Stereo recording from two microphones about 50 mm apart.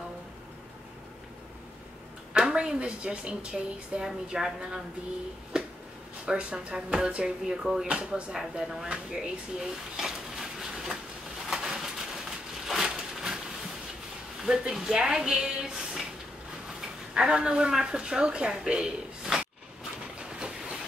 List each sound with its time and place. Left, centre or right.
2.3 s a woman's voice: centre
4.0 s a woman's voice: centre
5.5 s a sound: centre
6.2 s a woman's voice: right
7.9 s speech: right
11.4 s a sound: centre
14.4 s a woman's voice: centre
20.2 s train: centre